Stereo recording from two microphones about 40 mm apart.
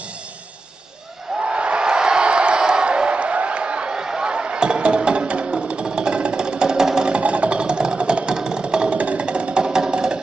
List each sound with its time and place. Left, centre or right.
1.4 s a sound: right
7.1 s music: right
8.9 s music: right